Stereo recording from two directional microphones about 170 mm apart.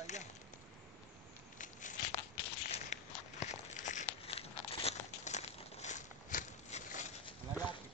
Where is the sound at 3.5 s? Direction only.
45° left (ahead or behind).